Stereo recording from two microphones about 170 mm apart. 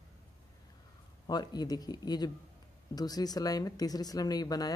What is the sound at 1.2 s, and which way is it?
Speech, 25° left (ahead or behind).